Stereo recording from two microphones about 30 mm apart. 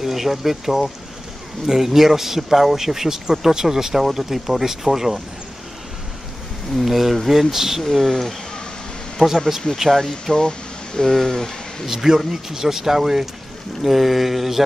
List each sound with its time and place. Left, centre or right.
0.0 s speech: centre
6.8 s speech: centre
7.8 s speech: centre
9.2 s speech: left
9.8 s speech: centre
11.9 s speech: centre